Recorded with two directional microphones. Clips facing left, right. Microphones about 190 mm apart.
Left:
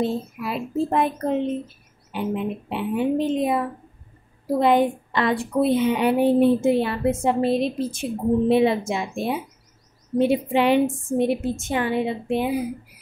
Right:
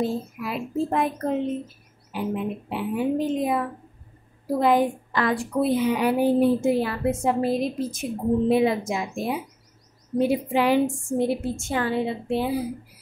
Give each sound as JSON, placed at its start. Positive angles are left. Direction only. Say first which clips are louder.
{"t": 0.0, "sound": "a woman's voice", "louder": "left 2 dB", "side_deg": 25}